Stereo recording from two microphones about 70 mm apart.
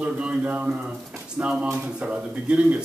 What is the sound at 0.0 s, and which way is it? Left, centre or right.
A man's voice, centre.